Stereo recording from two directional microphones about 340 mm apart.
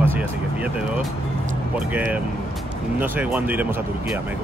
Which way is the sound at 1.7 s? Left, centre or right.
Centre.